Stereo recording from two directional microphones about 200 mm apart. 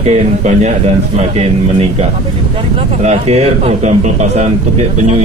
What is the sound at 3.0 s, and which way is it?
Speech, 35° right (ahead or behind).